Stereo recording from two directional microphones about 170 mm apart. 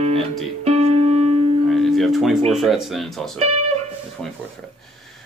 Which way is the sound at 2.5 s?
Centre (ahead or behind).